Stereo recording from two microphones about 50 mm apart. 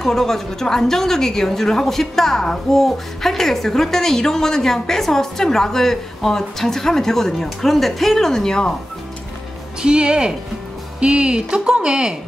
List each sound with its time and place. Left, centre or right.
0.0 s a woman's voice: centre
9.8 s speech: centre